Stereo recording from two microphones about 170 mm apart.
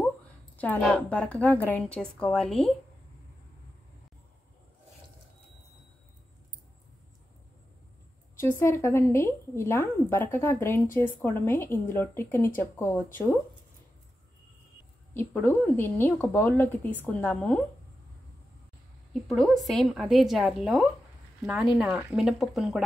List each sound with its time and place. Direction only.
0.6 s speech: 5° left (ahead or behind)
8.4 s speech: 15° left (ahead or behind)
15.1 s speech: 15° left (ahead or behind)
19.2 s a woman's voice: centre (ahead or behind)